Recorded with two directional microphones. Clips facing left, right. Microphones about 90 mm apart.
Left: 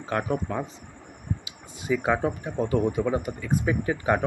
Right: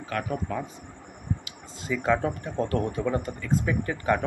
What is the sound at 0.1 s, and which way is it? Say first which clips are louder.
Speech: left 3 dB; 25° left (ahead or behind).